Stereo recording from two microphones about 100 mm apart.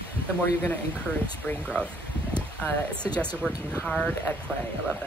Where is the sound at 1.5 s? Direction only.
10° left (ahead or behind).